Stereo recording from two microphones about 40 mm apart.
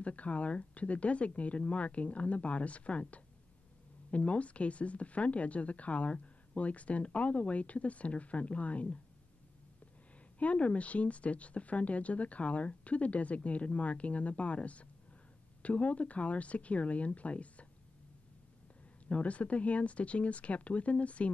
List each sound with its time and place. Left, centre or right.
0.0 s speech: left
10.4 s speech: left
19.0 s speech: left